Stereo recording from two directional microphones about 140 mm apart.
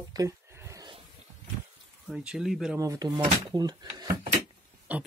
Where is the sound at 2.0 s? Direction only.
5° right (ahead or behind).